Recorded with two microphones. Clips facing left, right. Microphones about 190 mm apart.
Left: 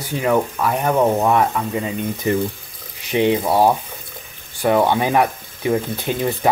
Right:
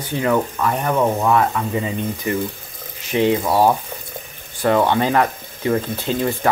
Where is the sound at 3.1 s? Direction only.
20° left (ahead or behind).